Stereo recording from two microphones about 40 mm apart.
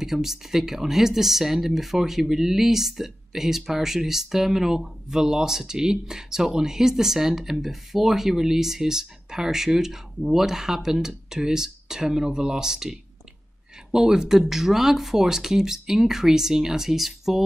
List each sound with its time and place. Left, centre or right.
0.0 s speech: centre
13.9 s speech: centre